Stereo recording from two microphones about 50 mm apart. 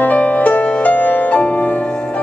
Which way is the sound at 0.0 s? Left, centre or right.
Left.